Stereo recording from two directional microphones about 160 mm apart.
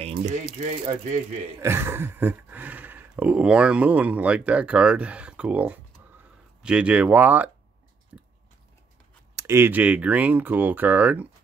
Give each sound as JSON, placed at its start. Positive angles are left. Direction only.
{"t": 0.0, "sound": "typewriter", "side_deg": -45}
{"t": 0.6, "sound": "speech", "side_deg": -45}
{"t": 1.6, "sound": "speech", "side_deg": -15}
{"t": 8.1, "sound": "biting", "side_deg": -10}
{"t": 9.3, "sound": "speech", "side_deg": -20}